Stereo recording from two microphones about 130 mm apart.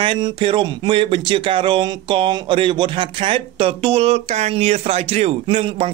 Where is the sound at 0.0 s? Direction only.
40° right (ahead or behind).